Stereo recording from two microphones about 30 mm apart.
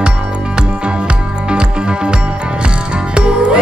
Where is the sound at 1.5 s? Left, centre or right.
Right.